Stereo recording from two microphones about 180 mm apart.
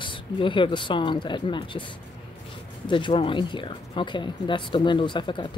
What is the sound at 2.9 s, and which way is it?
Speech, 25° left (ahead or behind).